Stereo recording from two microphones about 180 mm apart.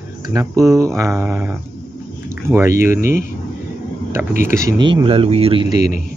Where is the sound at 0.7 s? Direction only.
15° right (ahead or behind).